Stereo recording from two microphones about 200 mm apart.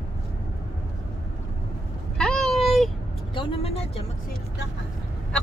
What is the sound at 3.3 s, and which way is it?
Speech, 25° left (ahead or behind).